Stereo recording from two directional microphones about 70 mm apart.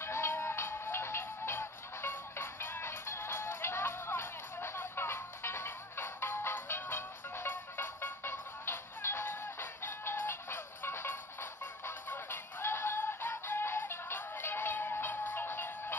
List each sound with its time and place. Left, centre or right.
0.0 s music: left